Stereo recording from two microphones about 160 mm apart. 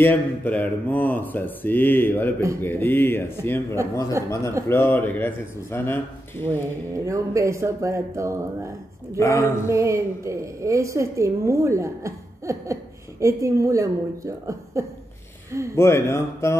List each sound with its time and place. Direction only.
0.0 s speech: 10° left (ahead or behind)
7.1 s a woman's voice: 20° right (ahead or behind)
9.2 s speech: 20° left (ahead or behind)
9.7 s a woman's voice: 20° right (ahead or behind)
15.7 s speech: 15° left (ahead or behind)